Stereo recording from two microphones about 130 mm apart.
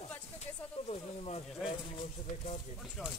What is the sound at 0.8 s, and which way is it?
Snake, 50° left (ahead or behind).